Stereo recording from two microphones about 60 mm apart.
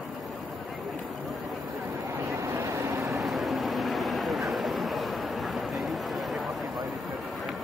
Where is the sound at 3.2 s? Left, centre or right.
Centre.